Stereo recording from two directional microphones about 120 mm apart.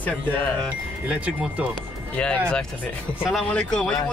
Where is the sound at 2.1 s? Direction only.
10° left (ahead or behind).